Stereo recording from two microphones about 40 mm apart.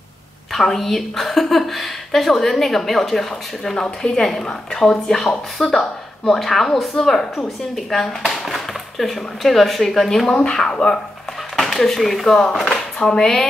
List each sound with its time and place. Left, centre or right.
0.5 s a woman's voice: centre
11.7 s a woman's voice: centre
12.4 s speech: centre